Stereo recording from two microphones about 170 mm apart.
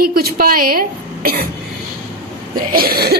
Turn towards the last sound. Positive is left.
turn(degrees=-65)  # may be behind; listen again after turning